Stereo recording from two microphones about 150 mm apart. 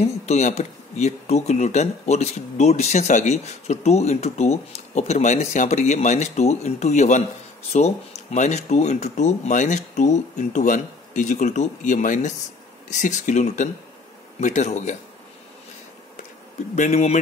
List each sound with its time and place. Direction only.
0.0 s speech: 50° left (ahead or behind)
16.7 s speech: 50° left (ahead or behind)